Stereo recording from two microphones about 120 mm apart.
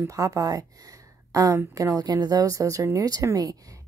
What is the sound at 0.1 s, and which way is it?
A woman's voice, 30° right (ahead or behind).